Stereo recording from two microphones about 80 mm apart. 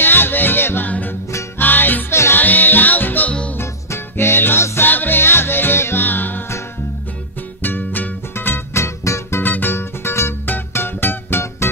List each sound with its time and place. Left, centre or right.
0.0 s music: left
3.5 s music: left
7.6 s music: left
9.4 s music: left